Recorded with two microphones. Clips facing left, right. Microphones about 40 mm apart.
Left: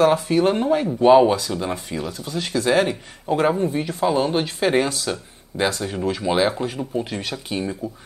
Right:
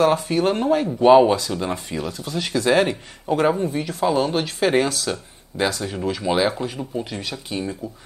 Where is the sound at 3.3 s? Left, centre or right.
Centre.